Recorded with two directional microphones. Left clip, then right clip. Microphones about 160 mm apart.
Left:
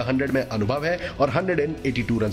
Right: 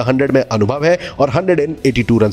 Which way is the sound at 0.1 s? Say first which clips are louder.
Right 12 dB; 55° right (ahead or behind).